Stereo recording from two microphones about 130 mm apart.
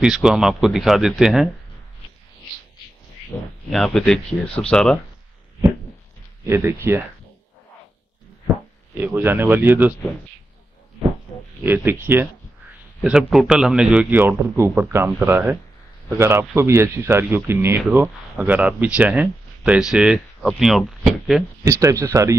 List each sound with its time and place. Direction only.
0.0 s speech: 5° right (ahead or behind)
3.7 s speech: 5° left (ahead or behind)
6.4 s speech: 20° right (ahead or behind)
8.9 s speech: 15° right (ahead or behind)
11.0 s a sound: 45° right (ahead or behind)
11.6 s speech: 15° right (ahead or behind)
13.0 s speech: 5° right (ahead or behind)
21.6 s speech: 25° right (ahead or behind)